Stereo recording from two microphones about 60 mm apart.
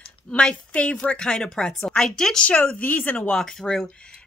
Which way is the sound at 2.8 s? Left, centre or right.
Left.